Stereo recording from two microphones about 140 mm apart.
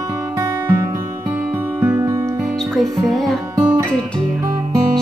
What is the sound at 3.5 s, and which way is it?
Music, 20° right (ahead or behind).